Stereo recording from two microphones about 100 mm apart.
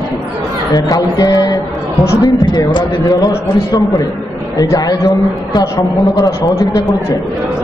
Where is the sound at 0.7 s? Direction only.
40° left (ahead or behind).